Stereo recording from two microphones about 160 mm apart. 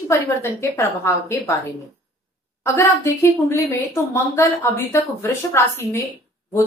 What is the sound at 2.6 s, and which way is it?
A woman's voice, 20° left (ahead or behind).